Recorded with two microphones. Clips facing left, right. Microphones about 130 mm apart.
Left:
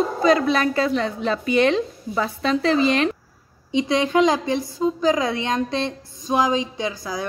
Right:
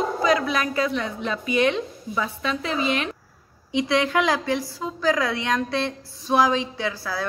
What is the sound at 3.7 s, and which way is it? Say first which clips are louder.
A woman's voice: left 3 dB; 20° left (ahead or behind).